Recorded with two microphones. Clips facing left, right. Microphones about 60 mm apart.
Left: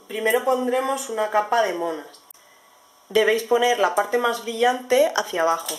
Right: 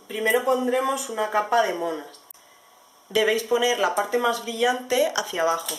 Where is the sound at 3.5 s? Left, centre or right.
Centre.